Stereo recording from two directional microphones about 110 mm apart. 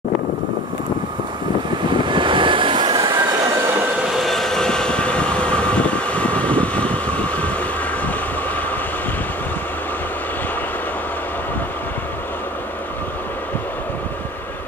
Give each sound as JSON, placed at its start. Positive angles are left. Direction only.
{"t": 1.9, "sound": "vehicle", "side_deg": -50}
{"t": 4.1, "sound": "train", "side_deg": 0}